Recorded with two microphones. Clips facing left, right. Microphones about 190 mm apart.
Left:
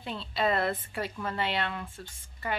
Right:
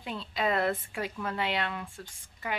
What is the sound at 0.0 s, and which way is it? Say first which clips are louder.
A woman's voice: left 2 dB; 10° right (ahead or behind).